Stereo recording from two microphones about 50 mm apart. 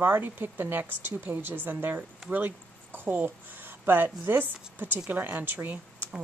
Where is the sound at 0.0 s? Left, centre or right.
Right.